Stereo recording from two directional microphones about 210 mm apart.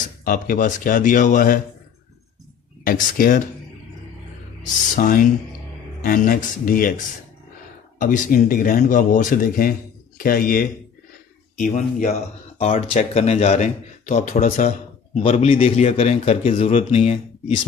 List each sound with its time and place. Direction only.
0.2 s speech: 40° left (ahead or behind)
2.8 s speech: 40° left (ahead or behind)
4.9 s speech: 40° left (ahead or behind)
8.0 s a man's voice: 40° left (ahead or behind)